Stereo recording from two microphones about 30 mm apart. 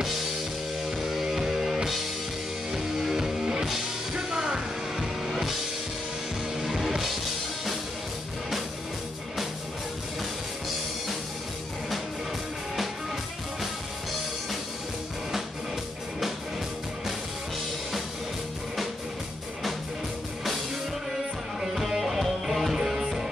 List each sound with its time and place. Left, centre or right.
1.2 s music: right
4.9 s music: centre
6.6 s music: centre
21.5 s music: centre